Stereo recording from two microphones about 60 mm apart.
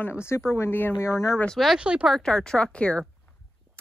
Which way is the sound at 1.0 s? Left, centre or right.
Left.